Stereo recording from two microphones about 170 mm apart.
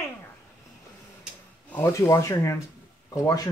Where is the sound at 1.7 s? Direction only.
15° left (ahead or behind).